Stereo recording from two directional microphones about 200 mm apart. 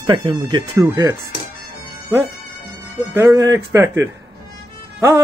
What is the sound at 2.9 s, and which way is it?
Speech, 15° right (ahead or behind).